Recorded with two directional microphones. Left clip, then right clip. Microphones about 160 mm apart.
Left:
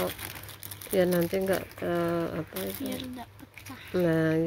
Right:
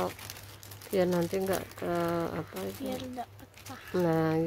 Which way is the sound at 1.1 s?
5° right (ahead or behind).